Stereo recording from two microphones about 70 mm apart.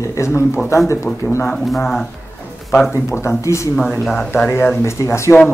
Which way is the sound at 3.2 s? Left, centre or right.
Left.